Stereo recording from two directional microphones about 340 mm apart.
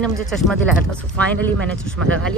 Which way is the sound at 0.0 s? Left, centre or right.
Centre.